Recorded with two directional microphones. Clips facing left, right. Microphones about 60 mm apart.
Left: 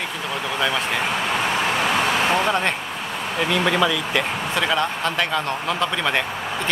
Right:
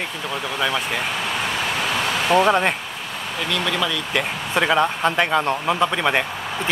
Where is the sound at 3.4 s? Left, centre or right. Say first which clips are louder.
Left 4 dB; centre.